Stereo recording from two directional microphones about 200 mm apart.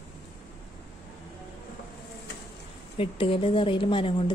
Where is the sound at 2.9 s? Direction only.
30° left (ahead or behind).